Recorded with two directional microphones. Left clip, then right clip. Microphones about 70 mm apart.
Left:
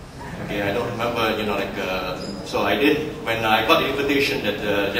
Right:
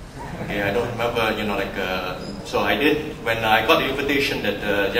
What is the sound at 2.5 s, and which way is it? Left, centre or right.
A man's voice, centre.